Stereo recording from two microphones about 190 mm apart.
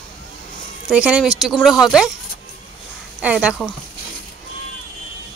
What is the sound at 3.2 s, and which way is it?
Speech, 5° right (ahead or behind).